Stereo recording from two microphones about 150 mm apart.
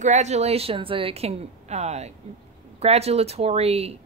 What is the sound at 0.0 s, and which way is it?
Speech, 50° right (ahead or behind).